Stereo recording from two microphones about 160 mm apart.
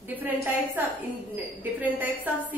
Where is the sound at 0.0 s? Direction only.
10° right (ahead or behind).